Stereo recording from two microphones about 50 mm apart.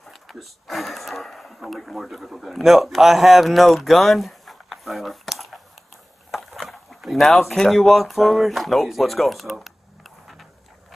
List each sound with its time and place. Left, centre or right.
0.1 s speech: centre